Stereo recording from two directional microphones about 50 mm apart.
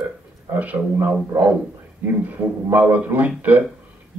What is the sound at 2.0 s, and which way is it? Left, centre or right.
Speech, right.